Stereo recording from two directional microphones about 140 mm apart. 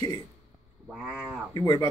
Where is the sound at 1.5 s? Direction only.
25° left (ahead or behind).